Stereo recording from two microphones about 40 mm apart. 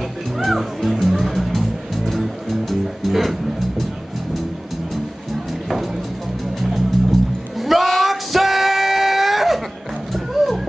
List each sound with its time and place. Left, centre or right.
0.4 s music: centre
6.6 s music: centre
10.1 s a sound: centre